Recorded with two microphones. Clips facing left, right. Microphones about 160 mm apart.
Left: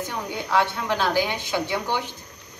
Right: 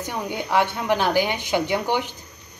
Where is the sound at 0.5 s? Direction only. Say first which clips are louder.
Right 2 dB; 15° right (ahead or behind).